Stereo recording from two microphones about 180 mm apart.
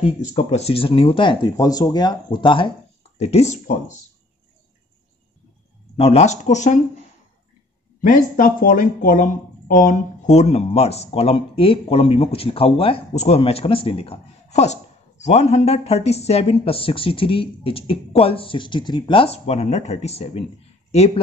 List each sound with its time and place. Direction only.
0.0 s speech: 40° left (ahead or behind)
5.9 s speech: 35° left (ahead or behind)
8.0 s speech: 50° left (ahead or behind)